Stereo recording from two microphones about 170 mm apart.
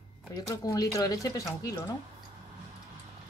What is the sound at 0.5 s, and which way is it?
Speech, 20° left (ahead or behind).